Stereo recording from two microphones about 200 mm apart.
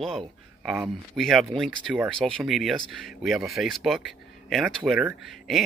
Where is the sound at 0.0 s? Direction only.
Centre (ahead or behind).